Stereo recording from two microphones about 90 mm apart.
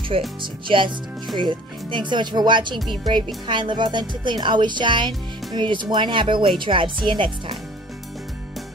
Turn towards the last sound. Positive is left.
turn(degrees=-70)  # may be behind; listen again after turning